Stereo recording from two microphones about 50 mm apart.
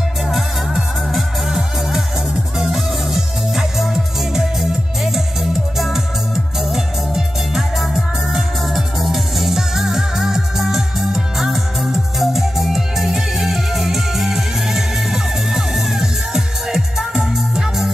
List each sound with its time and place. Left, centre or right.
0.3 s music: centre